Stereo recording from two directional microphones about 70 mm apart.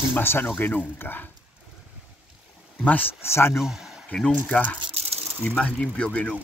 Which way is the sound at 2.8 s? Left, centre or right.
Left.